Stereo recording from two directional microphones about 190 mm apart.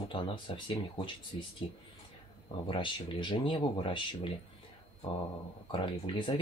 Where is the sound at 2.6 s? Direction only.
25° left (ahead or behind).